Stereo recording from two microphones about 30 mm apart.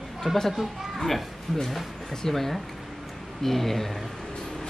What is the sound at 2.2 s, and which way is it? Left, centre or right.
A man's voice, centre.